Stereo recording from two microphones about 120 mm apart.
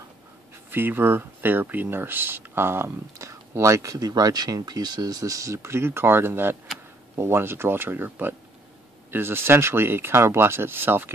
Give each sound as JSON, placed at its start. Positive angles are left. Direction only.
{"t": 0.7, "sound": "speech", "side_deg": -15}